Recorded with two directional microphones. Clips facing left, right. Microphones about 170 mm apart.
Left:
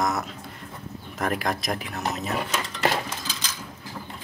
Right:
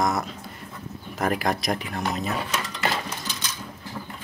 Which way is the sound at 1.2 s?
Centre (ahead or behind).